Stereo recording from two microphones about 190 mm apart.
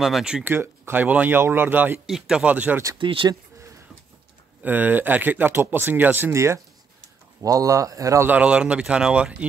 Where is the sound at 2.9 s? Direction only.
25° right (ahead or behind).